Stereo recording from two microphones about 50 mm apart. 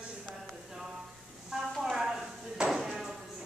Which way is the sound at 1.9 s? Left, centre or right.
Centre.